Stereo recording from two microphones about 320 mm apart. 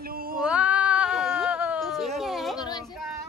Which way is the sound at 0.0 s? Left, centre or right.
Right.